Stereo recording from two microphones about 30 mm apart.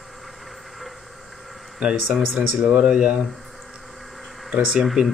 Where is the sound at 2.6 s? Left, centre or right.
Right.